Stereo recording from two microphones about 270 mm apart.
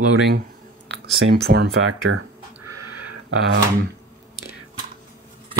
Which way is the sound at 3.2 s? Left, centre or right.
Right.